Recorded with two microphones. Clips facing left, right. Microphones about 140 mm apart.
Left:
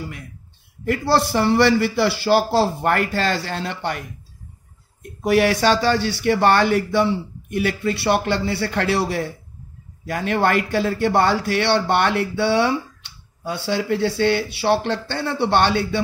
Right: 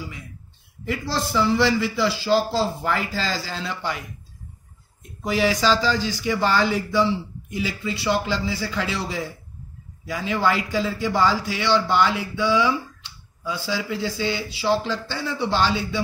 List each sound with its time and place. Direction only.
0.8 s a man's voice: 70° left (ahead or behind)
5.2 s a man's voice: 65° left (ahead or behind)